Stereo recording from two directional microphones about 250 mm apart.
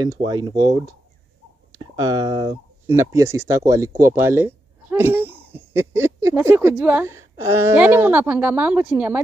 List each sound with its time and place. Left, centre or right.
0.0 s speech: centre